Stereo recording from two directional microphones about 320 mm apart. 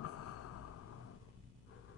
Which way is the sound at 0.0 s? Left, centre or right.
Left.